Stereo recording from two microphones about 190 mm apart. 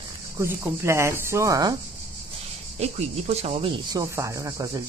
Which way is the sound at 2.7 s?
35° right (ahead or behind).